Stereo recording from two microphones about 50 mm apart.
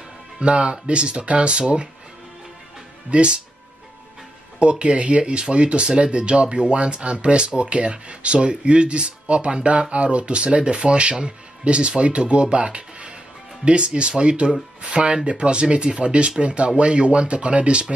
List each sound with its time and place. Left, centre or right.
0.4 s speech: right
3.1 s speech: right
4.6 s speech: right